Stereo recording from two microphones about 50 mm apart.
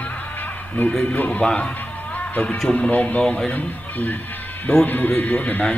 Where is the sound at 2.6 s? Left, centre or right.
Left.